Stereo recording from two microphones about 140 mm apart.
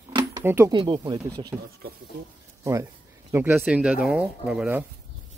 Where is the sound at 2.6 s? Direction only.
20° right (ahead or behind); by 4.6 s 5° right (ahead or behind).